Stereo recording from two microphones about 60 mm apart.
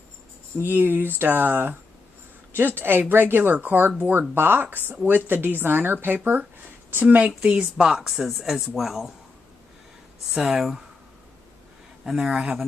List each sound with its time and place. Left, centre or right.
0.7 s speech: right
7.2 s speech: centre
10.3 s speech: centre
12.0 s speech: centre
12.3 s speech: centre